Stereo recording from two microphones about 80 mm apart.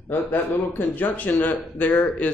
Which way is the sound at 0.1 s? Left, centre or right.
Left.